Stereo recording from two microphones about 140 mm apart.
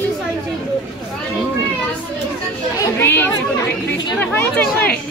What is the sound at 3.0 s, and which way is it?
Speech, 15° left (ahead or behind).